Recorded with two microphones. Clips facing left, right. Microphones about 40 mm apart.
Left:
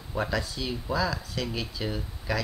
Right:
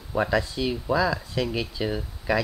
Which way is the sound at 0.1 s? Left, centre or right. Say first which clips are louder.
Right 6 dB; right.